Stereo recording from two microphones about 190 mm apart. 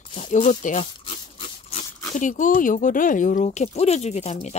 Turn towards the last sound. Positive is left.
turn(degrees=35)  # may be behind; listen again after turning